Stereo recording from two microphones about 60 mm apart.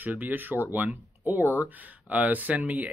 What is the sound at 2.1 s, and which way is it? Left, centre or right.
Speech, right.